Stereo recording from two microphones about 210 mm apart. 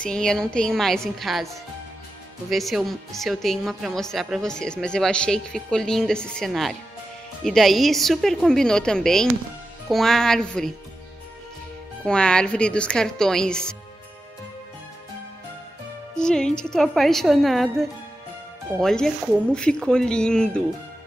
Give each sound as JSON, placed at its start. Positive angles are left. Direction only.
{"t": 0.0, "sound": "a woman's voice", "side_deg": 5}
{"t": 12.1, "sound": "a woman's voice", "side_deg": 5}
{"t": 16.2, "sound": "a woman's voice", "side_deg": 5}